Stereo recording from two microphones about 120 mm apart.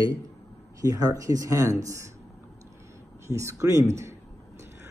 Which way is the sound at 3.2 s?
25° right (ahead or behind).